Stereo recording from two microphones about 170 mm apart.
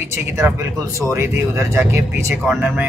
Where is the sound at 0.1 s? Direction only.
15° right (ahead or behind).